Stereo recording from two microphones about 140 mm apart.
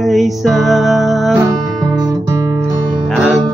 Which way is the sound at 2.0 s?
25° right (ahead or behind).